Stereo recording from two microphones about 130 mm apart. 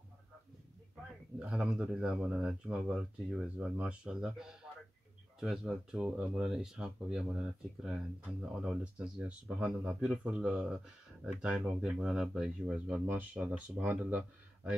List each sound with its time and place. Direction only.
1.4 s speech: 5° right (ahead or behind)